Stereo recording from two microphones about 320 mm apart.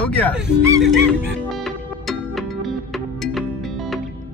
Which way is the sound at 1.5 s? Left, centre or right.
Centre.